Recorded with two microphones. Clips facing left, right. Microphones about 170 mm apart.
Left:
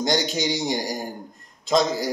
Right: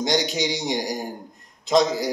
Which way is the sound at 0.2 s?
15° right (ahead or behind).